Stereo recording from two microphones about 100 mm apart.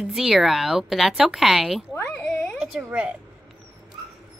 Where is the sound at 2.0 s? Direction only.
10° left (ahead or behind).